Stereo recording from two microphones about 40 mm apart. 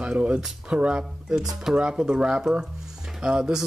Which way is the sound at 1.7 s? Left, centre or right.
Right.